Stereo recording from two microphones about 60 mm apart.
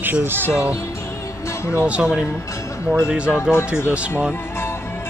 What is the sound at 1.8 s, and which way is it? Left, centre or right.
Speech, right.